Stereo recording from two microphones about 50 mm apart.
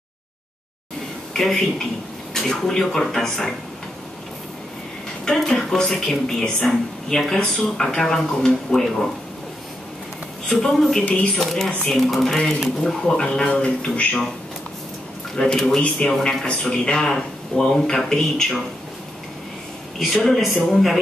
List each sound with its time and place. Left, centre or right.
1.3 s speech: centre
5.2 s speech: centre
10.5 s speech: centre
15.3 s speech: centre
20.0 s speech: centre